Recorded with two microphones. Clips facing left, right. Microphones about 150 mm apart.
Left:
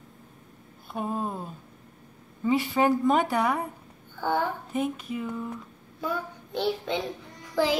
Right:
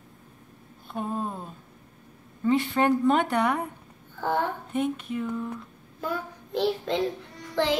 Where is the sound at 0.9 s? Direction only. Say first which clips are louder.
Even; 5° left (ahead or behind).